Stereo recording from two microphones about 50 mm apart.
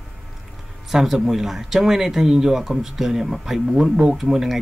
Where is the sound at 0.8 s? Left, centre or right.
Centre.